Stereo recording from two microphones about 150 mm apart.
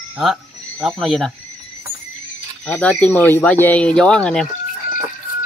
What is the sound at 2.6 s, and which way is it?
Speech, 10° left (ahead or behind).